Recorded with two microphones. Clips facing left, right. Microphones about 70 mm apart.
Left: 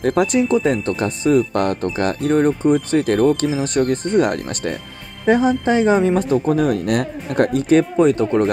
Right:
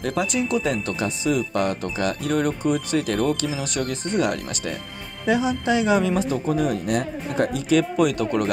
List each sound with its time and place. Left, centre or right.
0.0 s speech: left
2.3 s speech: left
7.7 s speech: left